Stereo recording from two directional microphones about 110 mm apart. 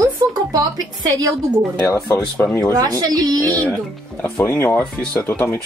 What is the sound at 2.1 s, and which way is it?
Speech, 20° left (ahead or behind).